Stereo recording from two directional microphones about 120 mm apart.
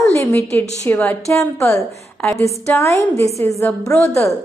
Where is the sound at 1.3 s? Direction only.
25° left (ahead or behind).